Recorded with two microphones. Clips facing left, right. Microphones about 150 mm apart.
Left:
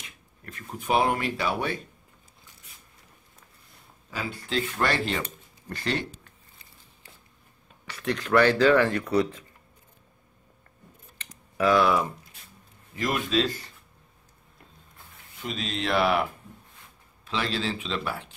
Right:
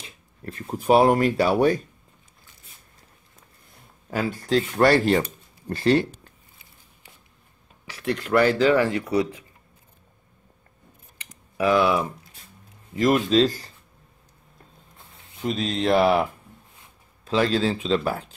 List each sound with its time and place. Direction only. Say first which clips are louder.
0.0 s speech: right 8 dB; 35° right (ahead or behind)
4.1 s a man's voice: right 8 dB; 45° right (ahead or behind)
7.8 s a sound: right 2 dB; 10° right (ahead or behind)
8.4 s speech: right 1 dB; 10° right (ahead or behind)
11.5 s speech: right 1 dB; 15° right (ahead or behind)
12.9 s a man's voice: right 7 dB; 40° right (ahead or behind)
15.4 s a man's voice: right 7 dB; 40° right (ahead or behind)